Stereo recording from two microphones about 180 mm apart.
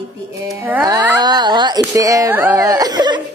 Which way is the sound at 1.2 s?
25° right (ahead or behind).